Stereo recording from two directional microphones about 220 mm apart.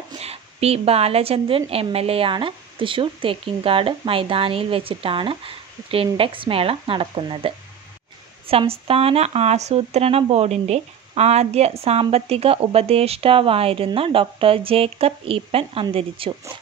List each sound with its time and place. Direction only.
0.1 s speech: 25° right (ahead or behind)